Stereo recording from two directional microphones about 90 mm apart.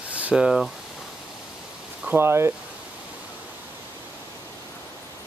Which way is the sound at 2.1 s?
25° right (ahead or behind).